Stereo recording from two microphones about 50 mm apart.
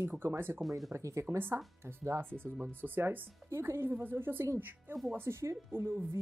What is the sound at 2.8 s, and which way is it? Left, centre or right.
Speech, right.